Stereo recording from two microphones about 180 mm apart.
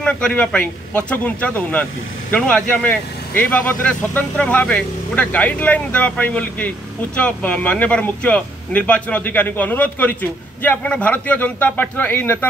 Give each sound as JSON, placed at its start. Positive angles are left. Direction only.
{"t": 0.0, "sound": "speech", "side_deg": 5}